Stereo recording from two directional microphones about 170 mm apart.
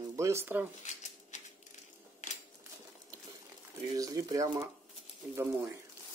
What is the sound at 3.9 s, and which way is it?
Speech, 20° right (ahead or behind).